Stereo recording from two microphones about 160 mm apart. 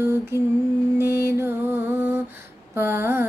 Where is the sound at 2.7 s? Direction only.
15° right (ahead or behind).